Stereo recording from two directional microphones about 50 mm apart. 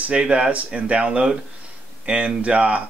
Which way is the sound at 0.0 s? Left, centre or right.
Right.